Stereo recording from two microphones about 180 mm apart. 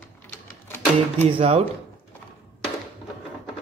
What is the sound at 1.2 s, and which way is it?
Speech, 30° right (ahead or behind).